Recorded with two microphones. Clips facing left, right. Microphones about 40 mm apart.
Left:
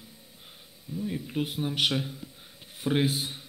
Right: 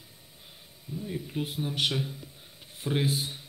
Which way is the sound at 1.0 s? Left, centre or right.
Centre.